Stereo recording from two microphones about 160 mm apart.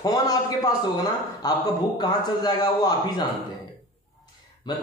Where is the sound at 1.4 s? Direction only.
25° left (ahead or behind).